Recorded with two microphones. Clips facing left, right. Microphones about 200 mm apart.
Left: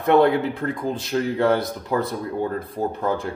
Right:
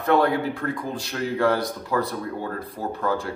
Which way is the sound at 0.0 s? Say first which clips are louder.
Left 4 dB; 20° left (ahead or behind).